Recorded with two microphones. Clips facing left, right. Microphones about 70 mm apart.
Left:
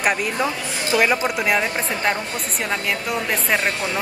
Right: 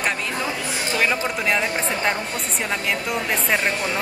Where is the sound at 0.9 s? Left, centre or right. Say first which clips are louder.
Left 4 dB; centre.